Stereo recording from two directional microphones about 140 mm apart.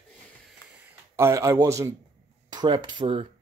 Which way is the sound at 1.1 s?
20° right (ahead or behind).